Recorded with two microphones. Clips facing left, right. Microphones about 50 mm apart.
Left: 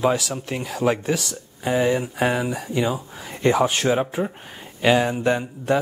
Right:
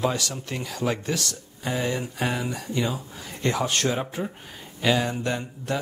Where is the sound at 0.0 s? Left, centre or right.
Centre.